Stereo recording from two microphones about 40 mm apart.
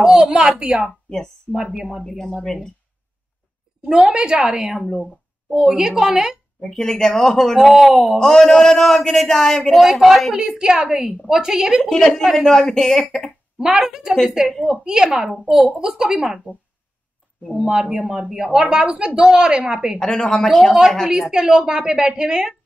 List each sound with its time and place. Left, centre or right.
0.0 s speech: centre
2.0 s a man's voice: centre
3.9 s speech: right
6.6 s a man's voice: centre
7.7 s speech: centre
8.2 s a man's voice: centre
10.3 s speech: centre
12.4 s a man's voice: centre
13.6 s speech: centre
17.5 s speech: right
20.0 s a man's voice: centre
21.2 s speech: centre